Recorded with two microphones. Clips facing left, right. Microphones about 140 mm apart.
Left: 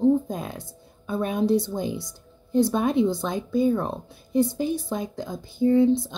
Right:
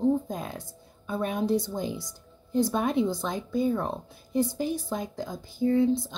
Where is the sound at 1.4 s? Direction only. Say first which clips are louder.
Left 5 dB; 65° left (ahead or behind).